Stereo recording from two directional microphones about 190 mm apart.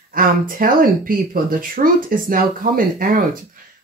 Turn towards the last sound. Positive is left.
turn(degrees=-50)  # may be behind; listen again after turning